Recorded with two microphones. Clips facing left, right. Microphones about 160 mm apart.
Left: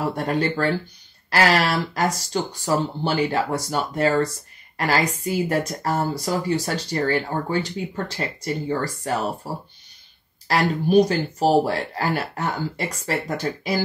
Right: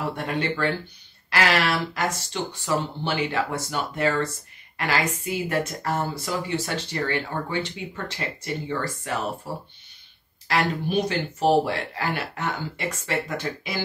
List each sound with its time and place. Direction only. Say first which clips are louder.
0.0 s speech: left 4 dB; 40° left (ahead or behind)
10.5 s speech: left 6 dB; 40° left (ahead or behind)